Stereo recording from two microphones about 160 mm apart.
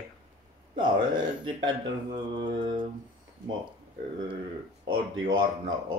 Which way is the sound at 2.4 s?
30° right (ahead or behind).